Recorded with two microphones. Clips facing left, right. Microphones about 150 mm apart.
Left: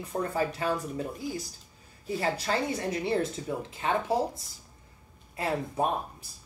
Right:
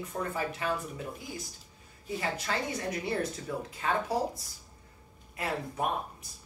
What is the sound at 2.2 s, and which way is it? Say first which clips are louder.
Speech: left 4 dB; 30° left (ahead or behind).